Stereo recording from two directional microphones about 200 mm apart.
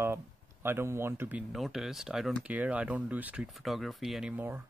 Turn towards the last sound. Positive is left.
turn(degrees=-10)  # may be behind; listen again after turning